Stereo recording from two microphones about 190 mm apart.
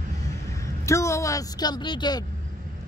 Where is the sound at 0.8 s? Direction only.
15° left (ahead or behind).